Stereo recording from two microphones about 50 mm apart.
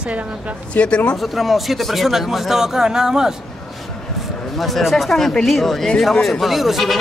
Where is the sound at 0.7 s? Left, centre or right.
Left.